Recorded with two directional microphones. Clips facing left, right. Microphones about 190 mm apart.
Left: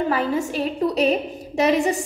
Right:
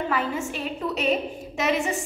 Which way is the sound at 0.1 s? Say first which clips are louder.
Left 5 dB; 35° left (ahead or behind).